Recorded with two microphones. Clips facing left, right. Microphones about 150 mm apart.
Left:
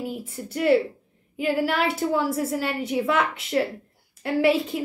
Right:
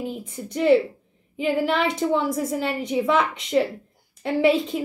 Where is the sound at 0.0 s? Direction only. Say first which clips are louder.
Right 1 dB; 5° left (ahead or behind).